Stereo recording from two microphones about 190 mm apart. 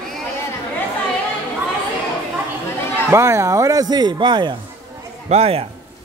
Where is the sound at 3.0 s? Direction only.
15° right (ahead or behind).